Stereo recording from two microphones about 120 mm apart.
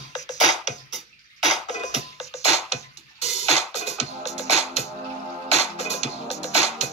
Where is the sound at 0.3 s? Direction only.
75° left (ahead or behind).